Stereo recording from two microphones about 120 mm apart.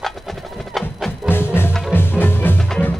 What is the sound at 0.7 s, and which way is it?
Music, centre (ahead or behind).